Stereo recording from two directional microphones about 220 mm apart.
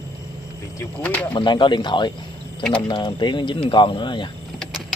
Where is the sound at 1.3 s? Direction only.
20° left (ahead or behind).